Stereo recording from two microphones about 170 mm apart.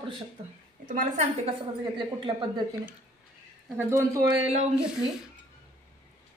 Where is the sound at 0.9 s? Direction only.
45° right (ahead or behind).